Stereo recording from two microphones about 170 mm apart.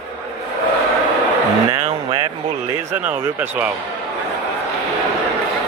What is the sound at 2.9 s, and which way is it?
Speech, 10° right (ahead or behind).